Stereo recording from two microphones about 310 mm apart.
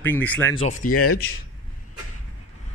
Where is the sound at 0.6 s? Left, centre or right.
Left.